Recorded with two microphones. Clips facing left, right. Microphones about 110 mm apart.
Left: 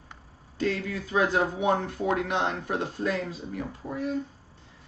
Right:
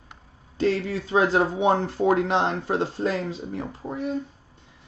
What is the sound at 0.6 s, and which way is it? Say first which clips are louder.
Speech: right 5 dB; 25° right (ahead or behind).